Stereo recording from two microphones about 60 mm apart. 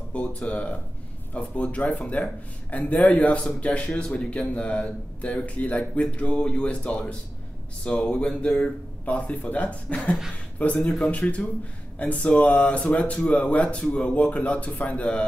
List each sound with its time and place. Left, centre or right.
0.1 s speech: left